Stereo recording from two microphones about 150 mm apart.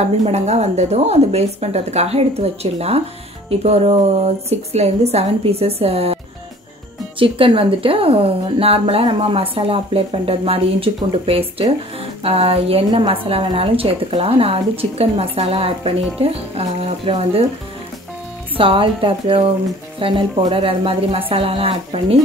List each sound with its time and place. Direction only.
0.0 s a woman's voice: 50° right (ahead or behind)
7.2 s a woman's voice: 35° right (ahead or behind)
18.6 s a woman's voice: 35° right (ahead or behind)